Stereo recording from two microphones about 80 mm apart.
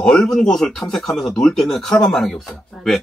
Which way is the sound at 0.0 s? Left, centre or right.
Centre.